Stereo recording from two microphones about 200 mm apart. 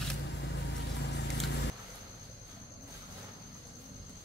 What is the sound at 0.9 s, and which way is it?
Vehicle, 60° left (ahead or behind).